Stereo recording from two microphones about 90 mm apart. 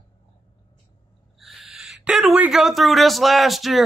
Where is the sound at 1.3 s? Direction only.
Centre (ahead or behind).